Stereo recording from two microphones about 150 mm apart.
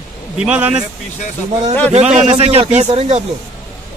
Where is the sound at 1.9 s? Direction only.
50° right (ahead or behind).